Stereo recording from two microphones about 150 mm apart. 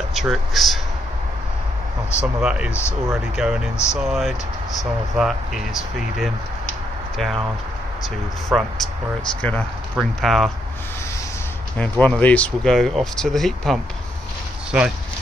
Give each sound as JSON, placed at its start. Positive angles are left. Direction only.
{"t": 0.1, "sound": "speech", "side_deg": 0}
{"t": 2.1, "sound": "speech", "side_deg": -5}
{"t": 8.5, "sound": "speech", "side_deg": 0}
{"t": 9.9, "sound": "speech", "side_deg": 0}
{"t": 11.8, "sound": "speech", "side_deg": 10}